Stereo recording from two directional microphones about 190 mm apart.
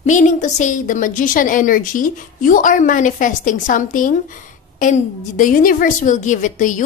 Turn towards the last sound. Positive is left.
turn(degrees=40)  # may be behind; listen again after turning